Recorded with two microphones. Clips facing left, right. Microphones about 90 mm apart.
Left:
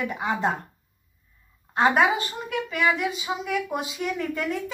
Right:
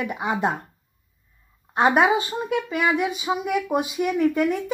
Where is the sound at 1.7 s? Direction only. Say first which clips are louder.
Right 2 dB; 25° right (ahead or behind).